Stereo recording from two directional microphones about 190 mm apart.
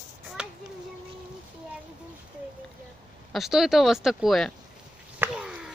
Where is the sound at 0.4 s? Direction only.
5° right (ahead or behind).